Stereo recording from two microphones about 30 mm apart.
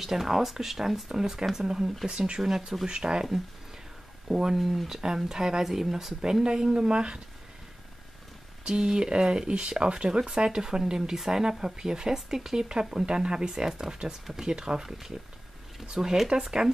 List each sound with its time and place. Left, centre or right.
0.0 s speech: centre
2.0 s speech: right
4.3 s speech: centre
4.6 s speech: centre
6.4 s speech: right
8.6 s speech: right
9.5 s speech: right; by 12.6 s centre
12.6 s speech: right
14.4 s speech: right
14.8 s speech: centre